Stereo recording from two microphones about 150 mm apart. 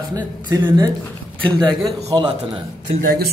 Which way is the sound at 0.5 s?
30° right (ahead or behind).